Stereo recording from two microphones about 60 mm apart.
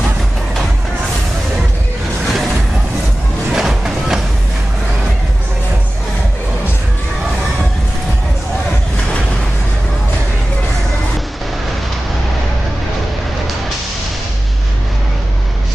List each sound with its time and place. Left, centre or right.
3.5 s music: centre